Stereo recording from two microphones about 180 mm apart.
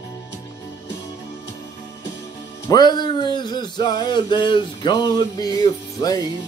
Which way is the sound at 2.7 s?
25° left (ahead or behind).